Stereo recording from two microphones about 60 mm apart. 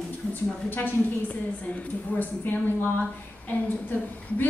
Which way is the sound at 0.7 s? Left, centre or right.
Left.